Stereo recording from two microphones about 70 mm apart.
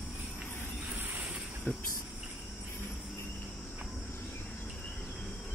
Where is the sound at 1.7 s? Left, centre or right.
Left.